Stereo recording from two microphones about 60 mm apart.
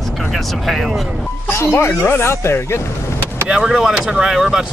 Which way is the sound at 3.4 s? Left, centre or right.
Centre.